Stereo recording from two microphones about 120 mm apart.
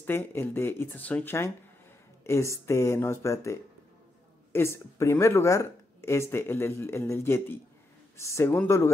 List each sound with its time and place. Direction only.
0.0 s speech: 20° left (ahead or behind)